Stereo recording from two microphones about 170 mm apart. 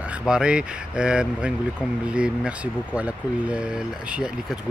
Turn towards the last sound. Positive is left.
turn(degrees=-5)  # may be behind; listen again after turning